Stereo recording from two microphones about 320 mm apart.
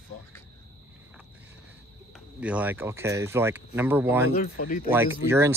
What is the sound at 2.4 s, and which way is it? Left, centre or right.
Speech, centre.